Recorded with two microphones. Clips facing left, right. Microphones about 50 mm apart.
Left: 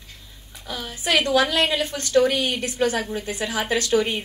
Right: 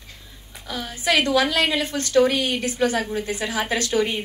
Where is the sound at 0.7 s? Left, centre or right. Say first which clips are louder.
Right 1 dB; right.